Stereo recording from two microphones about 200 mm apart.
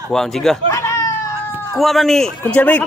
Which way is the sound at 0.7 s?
15° left (ahead or behind).